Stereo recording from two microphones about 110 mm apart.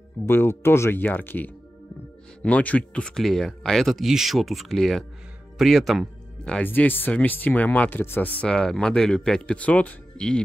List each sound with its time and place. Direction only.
0.3 s speech: 20° left (ahead or behind)